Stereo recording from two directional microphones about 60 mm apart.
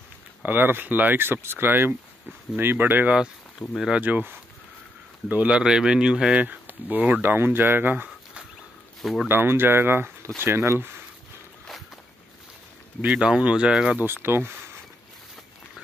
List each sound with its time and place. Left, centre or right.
0.4 s speech: right
3.6 s speech: left
3.9 s speech: right
5.6 s speech: centre
6.3 s speech: right
9.0 s speech: centre
9.3 s speech: right
13.0 s speech: centre
13.9 s speech: right